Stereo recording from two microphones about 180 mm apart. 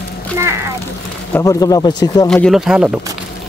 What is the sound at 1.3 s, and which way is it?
Speech, 20° left (ahead or behind).